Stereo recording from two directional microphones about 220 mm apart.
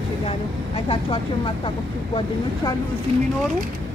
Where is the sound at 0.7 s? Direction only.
25° left (ahead or behind).